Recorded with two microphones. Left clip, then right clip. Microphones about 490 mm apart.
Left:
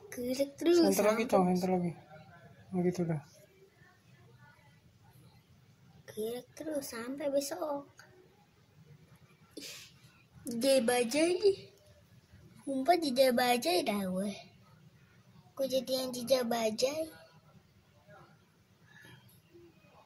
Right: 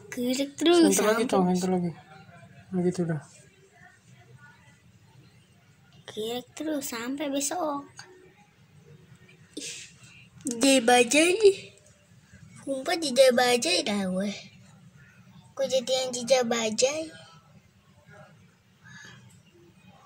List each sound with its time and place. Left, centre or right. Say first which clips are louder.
0.1 s a woman's voice: right 5 dB; right
0.9 s speech: right 4 dB; right
6.0 s a woman's voice: right 6 dB; right
10.7 s a woman's voice: right 8 dB; right
12.8 s a woman's voice: right 6 dB; right
15.6 s a woman's voice: right 7 dB; right